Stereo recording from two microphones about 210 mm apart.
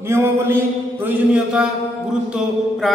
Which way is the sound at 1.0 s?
5° right (ahead or behind).